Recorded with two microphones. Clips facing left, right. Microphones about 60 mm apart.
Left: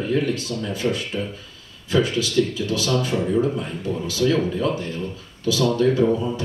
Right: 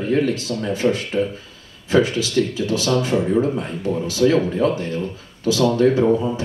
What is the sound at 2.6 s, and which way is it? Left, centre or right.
Speech, right.